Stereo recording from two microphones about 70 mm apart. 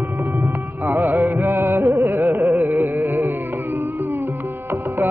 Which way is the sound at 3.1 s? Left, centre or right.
Right.